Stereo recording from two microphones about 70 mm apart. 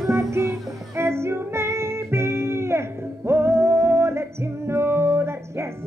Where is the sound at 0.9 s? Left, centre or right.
Right.